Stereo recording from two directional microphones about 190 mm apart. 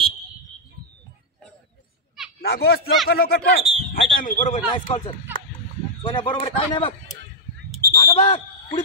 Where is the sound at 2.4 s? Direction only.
55° left (ahead or behind).